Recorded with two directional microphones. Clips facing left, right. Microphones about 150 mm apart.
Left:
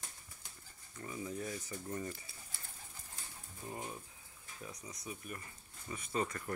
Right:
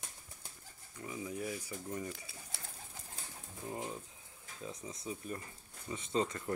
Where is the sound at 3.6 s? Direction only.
20° right (ahead or behind).